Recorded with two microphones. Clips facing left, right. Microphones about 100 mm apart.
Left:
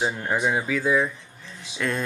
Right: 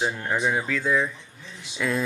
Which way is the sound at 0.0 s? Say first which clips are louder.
Left 1 dB; 10° left (ahead or behind).